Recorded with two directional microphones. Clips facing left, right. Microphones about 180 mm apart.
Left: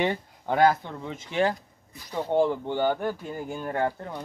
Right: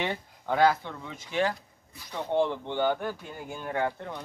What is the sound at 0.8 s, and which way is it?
Speech, 25° left (ahead or behind).